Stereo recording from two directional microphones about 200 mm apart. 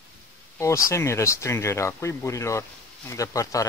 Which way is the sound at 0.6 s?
15° left (ahead or behind).